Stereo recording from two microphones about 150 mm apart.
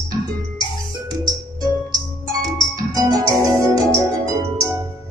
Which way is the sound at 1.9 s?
25° right (ahead or behind).